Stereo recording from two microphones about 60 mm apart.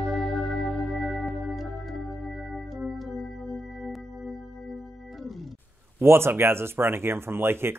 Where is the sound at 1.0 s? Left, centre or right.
Centre.